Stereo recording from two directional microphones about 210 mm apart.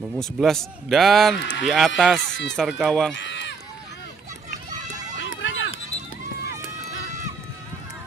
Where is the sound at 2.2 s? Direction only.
55° left (ahead or behind).